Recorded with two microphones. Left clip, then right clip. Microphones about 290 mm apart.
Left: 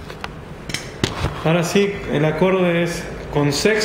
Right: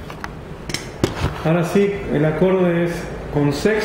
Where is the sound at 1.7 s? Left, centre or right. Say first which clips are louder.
Right 1 dB; left.